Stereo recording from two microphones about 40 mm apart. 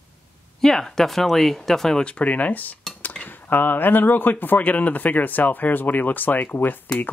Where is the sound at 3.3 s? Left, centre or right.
Left.